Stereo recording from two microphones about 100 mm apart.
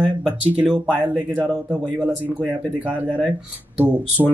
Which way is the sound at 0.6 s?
10° right (ahead or behind).